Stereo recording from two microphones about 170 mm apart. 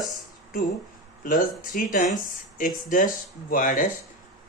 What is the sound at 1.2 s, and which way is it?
Speech, 50° left (ahead or behind).